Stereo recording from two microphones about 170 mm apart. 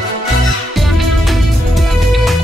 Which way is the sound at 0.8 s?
Centre (ahead or behind).